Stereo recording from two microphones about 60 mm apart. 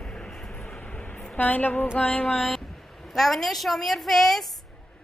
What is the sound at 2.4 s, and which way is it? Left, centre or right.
A woman's voice, centre.